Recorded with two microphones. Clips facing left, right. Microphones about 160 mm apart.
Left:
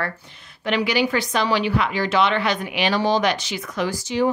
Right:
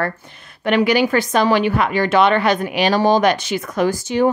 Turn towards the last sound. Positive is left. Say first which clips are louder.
# right 5 dB
turn(degrees=-50)  # may be behind; listen again after turning